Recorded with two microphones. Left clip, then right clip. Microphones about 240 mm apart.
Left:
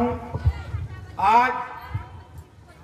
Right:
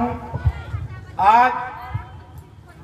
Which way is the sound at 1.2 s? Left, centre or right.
Right.